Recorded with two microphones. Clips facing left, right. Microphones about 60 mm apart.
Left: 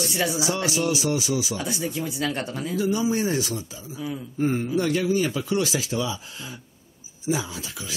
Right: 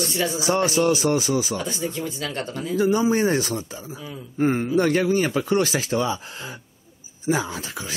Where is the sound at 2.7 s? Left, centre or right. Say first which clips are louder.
Right 4 dB; right.